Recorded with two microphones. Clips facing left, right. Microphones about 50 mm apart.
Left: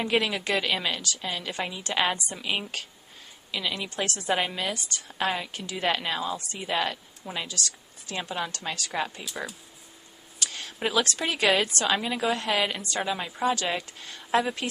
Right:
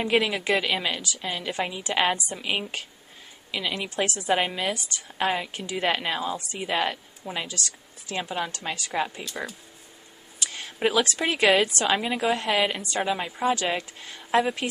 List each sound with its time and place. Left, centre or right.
0.0 s a woman's voice: centre
7.4 s speech: right
8.1 s a woman's voice: centre
10.4 s a sound: centre
10.8 s a woman's voice: centre